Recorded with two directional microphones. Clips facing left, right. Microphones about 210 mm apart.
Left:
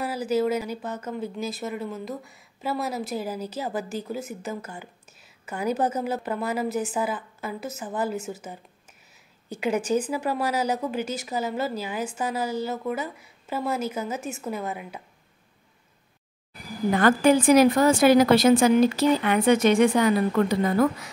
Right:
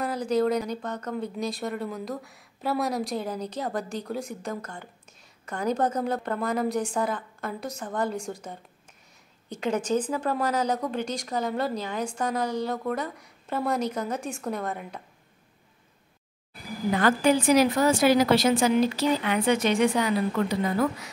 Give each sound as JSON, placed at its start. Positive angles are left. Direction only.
{"t": 0.0, "sound": "a woman's voice", "side_deg": 5}
{"t": 17.0, "sound": "a woman's voice", "side_deg": 50}